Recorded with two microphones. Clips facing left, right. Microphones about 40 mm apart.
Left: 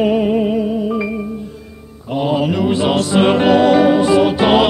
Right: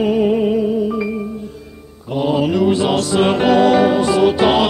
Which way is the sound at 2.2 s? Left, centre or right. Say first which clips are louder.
Right 1 dB; centre.